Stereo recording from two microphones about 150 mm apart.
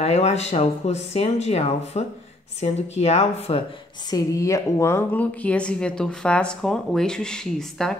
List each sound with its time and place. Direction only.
0.0 s speech: 45° left (ahead or behind)
4.1 s speech: 20° left (ahead or behind); by 8.0 s 5° left (ahead or behind)